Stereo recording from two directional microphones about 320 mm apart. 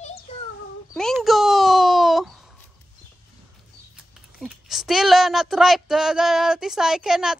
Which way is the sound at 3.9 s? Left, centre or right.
Centre.